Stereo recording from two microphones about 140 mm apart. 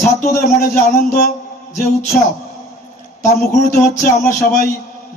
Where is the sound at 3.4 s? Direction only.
90° left.